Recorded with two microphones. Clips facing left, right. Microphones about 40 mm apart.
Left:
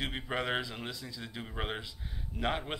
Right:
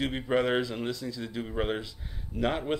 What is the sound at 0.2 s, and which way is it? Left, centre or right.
Speech, centre.